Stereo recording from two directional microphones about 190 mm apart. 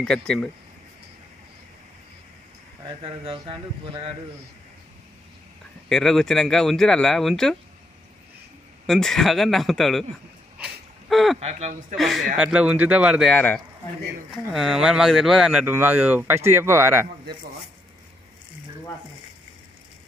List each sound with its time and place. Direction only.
0.0 s speech: 5° left (ahead or behind)
3.0 s speech: 25° right (ahead or behind)
5.9 s speech: 5° left (ahead or behind)
8.8 s speech: centre (ahead or behind)
10.6 s a sound: centre (ahead or behind)
11.3 s speech: 35° right (ahead or behind)
12.0 s speech: centre (ahead or behind)
13.3 s a man's voice: 10° left (ahead or behind); by 17.1 s 15° right (ahead or behind)